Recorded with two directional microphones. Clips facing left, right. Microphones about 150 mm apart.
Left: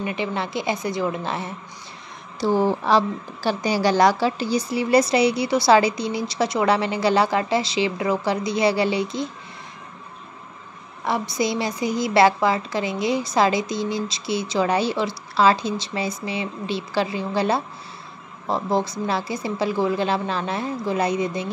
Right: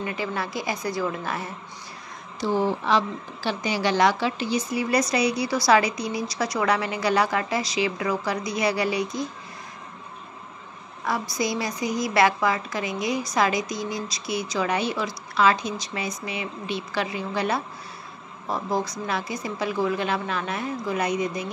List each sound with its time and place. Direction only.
0.0 s a woman's voice: 20° left (ahead or behind)
2.4 s a woman's voice: 35° left (ahead or behind)
11.1 s a woman's voice: 25° left (ahead or behind)